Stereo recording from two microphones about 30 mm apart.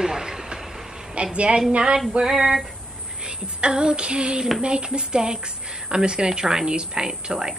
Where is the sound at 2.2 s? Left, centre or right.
Centre.